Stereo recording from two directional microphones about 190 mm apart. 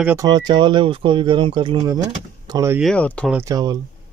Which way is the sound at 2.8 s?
5° left (ahead or behind).